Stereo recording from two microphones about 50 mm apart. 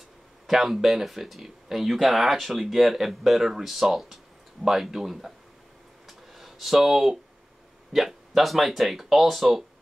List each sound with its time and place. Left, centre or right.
0.5 s speech: centre
6.0 s a sound: centre
7.9 s speech: centre